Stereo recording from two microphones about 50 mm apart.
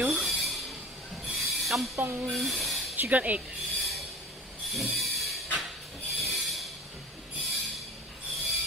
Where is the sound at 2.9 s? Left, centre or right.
Right.